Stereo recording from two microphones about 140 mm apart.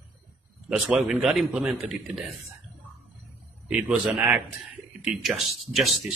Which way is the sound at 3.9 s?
10° right (ahead or behind).